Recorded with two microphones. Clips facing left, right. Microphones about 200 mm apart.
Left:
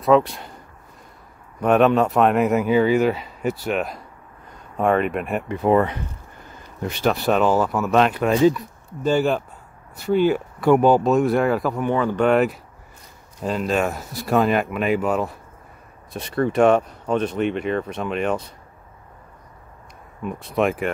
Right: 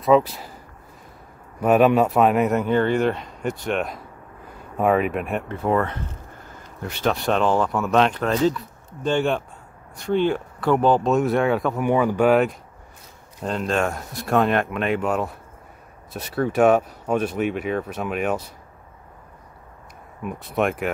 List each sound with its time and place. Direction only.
0.0 s speech: centre (ahead or behind)
1.6 s speech: 5° right (ahead or behind)
5.5 s speech: 15° left (ahead or behind)
7.1 s speech: 5° left (ahead or behind)
11.1 s speech: centre (ahead or behind)
11.8 s speech: 10° right (ahead or behind)
12.3 s speech: centre (ahead or behind)
20.2 s speech: 5° right (ahead or behind)